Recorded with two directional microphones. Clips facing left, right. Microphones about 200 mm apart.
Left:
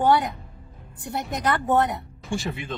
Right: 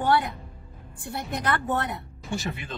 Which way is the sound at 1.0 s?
20° left (ahead or behind).